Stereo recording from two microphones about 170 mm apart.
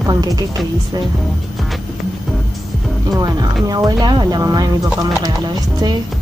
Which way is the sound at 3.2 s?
20° right (ahead or behind).